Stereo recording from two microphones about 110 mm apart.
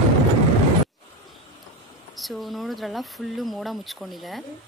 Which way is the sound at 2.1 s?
Centre (ahead or behind).